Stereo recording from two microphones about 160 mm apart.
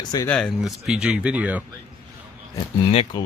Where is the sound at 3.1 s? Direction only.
25° left (ahead or behind).